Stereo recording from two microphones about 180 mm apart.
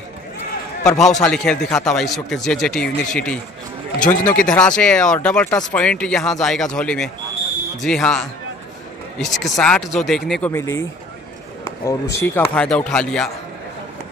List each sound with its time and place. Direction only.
0.8 s speech: centre (ahead or behind)
4.0 s a man's voice: 45° left (ahead or behind)
4.3 s speech: 5° left (ahead or behind)
9.2 s speech: centre (ahead or behind)
10.5 s speech: 15° left (ahead or behind)